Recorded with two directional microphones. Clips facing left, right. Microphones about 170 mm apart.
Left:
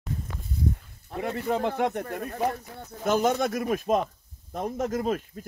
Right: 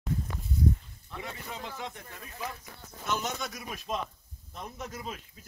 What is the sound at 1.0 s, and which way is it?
Speech, 50° left (ahead or behind).